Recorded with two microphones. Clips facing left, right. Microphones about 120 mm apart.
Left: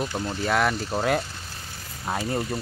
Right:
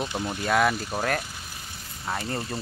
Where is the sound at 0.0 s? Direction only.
15° right (ahead or behind).